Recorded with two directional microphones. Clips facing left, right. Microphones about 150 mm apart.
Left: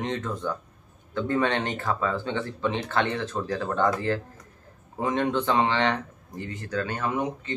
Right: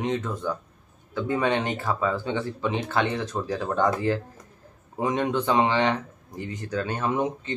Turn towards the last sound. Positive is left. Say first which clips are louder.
# right 2 dB
turn(degrees=-20)  # may be behind; listen again after turning